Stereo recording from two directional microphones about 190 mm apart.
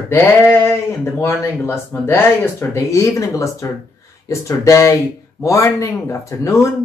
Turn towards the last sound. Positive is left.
turn(degrees=15)  # may be behind; listen again after turning